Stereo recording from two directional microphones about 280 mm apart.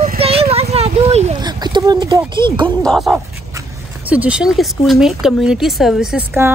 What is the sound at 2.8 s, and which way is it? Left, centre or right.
Speech, centre.